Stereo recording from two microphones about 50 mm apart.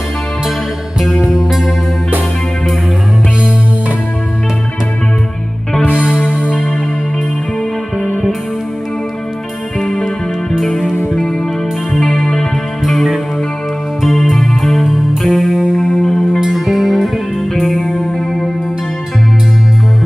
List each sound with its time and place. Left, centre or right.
9.8 s music: centre
10.9 s music: left
11.9 s music: centre
12.8 s music: centre